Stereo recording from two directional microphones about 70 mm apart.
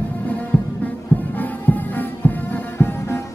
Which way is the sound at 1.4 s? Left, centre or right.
Left.